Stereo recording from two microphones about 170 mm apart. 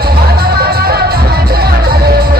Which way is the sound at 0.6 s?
65° right (ahead or behind).